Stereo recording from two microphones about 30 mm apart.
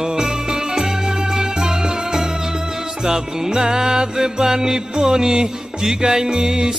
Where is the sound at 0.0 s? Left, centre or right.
Right.